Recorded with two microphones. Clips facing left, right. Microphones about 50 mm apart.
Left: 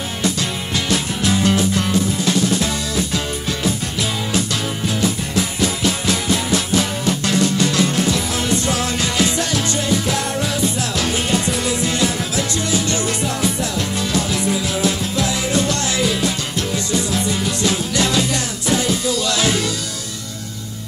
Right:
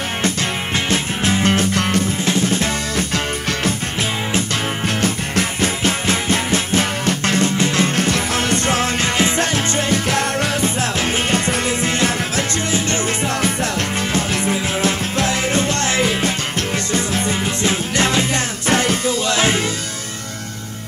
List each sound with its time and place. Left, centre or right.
0.2 s music: right
2.2 s music: right
4.8 s music: right
19.2 s music: right